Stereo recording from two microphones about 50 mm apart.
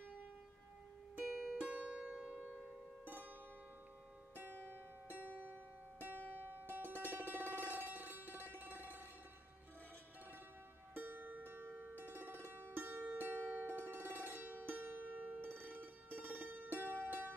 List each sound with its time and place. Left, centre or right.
1.2 s music: centre
1.7 s music: centre
4.6 s music: left
5.4 s music: right
6.1 s music: left
6.6 s music: right
11.0 s music: right